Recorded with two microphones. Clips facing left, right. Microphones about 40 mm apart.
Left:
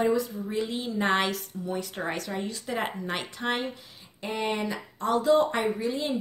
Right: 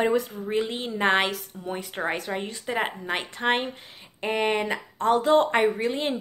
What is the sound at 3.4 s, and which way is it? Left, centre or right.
Speech, right.